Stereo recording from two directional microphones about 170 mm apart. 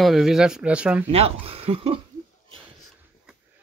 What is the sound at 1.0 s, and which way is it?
Speech, 35° right (ahead or behind).